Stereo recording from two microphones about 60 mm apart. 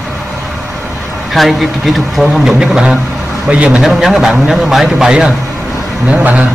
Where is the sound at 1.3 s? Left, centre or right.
Centre.